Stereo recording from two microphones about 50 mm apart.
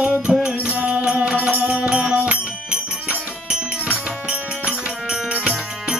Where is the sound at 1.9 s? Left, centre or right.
Centre.